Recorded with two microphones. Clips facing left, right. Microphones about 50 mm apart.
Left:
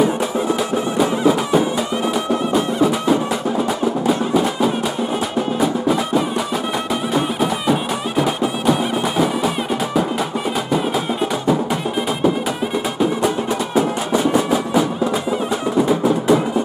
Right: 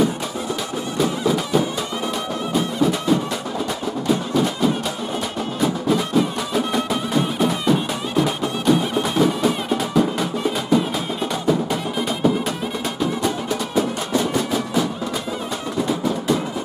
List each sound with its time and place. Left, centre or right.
0.9 s music: centre
13.7 s music: centre